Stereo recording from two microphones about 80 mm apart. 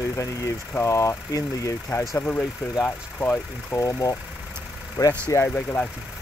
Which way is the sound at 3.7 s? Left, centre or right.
Left.